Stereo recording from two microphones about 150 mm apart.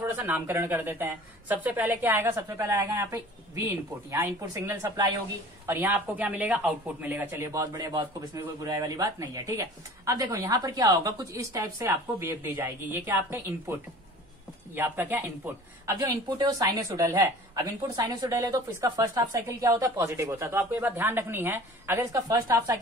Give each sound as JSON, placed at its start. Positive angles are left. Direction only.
{"t": 0.0, "sound": "a woman's voice", "side_deg": -15}
{"t": 16.0, "sound": "a woman's voice", "side_deg": -30}